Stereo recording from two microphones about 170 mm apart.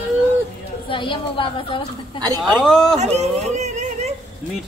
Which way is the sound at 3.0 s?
40° right (ahead or behind).